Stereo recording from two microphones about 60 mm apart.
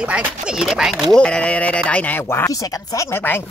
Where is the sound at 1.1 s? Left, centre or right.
Centre.